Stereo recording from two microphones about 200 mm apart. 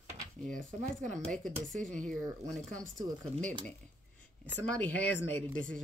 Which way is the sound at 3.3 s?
30° right (ahead or behind).